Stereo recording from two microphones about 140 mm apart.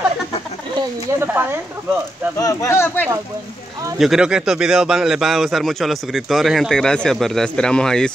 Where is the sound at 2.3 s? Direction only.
25° left (ahead or behind).